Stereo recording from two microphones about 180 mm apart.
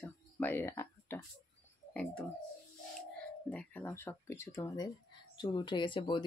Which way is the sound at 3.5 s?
10° left (ahead or behind).